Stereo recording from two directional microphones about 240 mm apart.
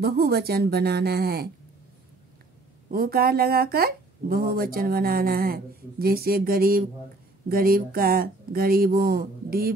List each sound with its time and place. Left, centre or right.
0.0 s speech: right
2.9 s speech: right